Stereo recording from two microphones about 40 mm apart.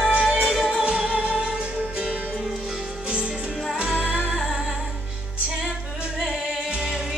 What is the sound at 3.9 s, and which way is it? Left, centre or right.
Music, right.